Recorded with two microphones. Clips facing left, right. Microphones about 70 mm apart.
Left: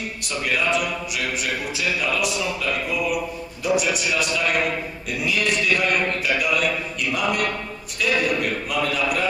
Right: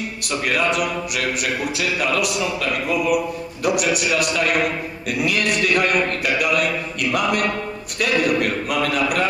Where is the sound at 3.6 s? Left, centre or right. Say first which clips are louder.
Right 2 dB; right.